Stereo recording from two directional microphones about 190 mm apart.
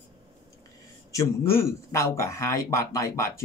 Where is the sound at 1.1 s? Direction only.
15° left (ahead or behind).